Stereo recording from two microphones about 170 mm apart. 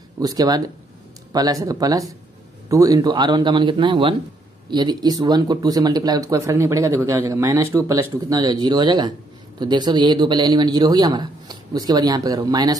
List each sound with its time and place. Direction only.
0.2 s speech: 20° right (ahead or behind)